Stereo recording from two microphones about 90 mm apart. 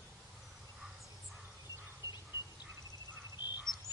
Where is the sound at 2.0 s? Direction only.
35° right (ahead or behind).